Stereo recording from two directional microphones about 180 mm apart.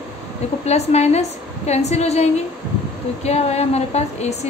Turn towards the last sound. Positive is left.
turn(degrees=35)  # may be behind; listen again after turning